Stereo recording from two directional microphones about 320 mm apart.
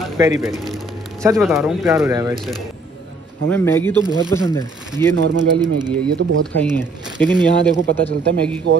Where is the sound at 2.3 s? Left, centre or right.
Centre.